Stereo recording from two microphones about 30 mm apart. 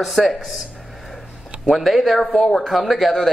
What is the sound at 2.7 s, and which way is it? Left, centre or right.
Speech, centre.